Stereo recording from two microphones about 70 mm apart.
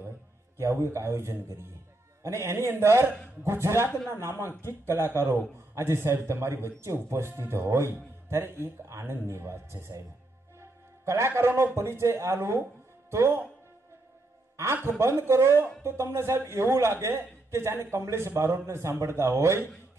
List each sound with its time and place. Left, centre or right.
0.6 s a man's voice: right
14.6 s speech: right